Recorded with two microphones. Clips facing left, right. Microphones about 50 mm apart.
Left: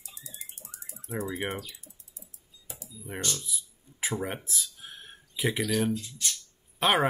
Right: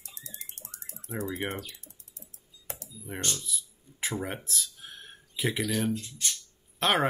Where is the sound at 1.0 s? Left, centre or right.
Centre.